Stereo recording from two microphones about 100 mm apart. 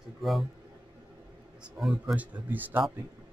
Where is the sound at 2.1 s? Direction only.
15° right (ahead or behind).